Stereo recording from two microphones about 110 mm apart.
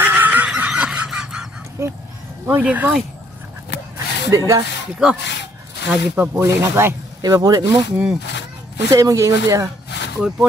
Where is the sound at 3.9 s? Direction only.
30° right (ahead or behind).